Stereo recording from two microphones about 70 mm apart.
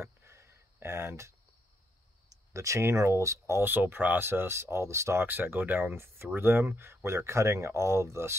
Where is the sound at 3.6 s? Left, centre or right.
Right.